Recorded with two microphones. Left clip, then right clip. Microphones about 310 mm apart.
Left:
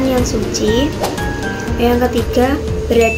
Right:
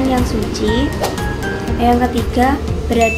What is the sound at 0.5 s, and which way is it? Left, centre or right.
Speech, centre.